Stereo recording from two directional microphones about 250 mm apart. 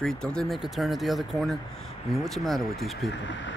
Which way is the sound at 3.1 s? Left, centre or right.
Left.